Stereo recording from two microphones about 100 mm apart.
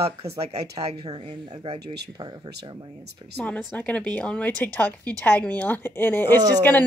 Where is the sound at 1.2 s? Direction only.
90° right.